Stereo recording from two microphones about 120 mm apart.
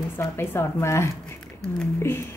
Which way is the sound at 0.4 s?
20° left (ahead or behind).